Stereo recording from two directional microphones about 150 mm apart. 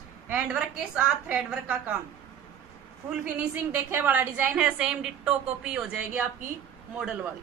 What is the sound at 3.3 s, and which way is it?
A woman's voice, 15° right (ahead or behind).